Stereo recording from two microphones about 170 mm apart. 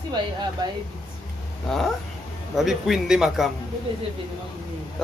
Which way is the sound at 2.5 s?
Centre (ahead or behind).